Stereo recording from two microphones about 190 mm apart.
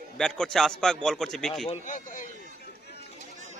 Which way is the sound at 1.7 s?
40° left (ahead or behind).